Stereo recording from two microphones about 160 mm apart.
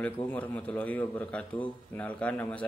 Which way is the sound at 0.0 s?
10° left (ahead or behind).